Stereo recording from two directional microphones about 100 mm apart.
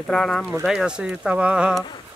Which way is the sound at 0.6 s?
10° right (ahead or behind).